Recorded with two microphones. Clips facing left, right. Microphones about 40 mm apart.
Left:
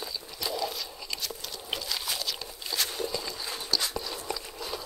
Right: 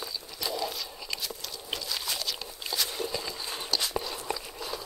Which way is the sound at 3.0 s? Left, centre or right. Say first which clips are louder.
Even; centre.